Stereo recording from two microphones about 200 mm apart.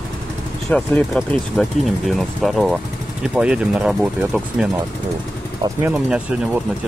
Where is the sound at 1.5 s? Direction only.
Centre (ahead or behind).